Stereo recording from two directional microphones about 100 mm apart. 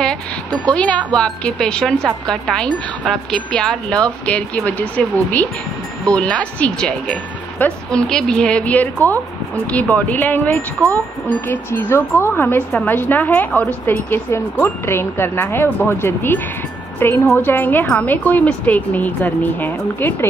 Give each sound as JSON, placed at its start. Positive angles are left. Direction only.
{"t": 0.7, "sound": "a woman's voice", "side_deg": 10}